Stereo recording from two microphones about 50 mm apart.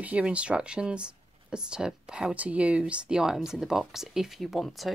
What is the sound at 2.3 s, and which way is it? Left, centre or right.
Speech, right.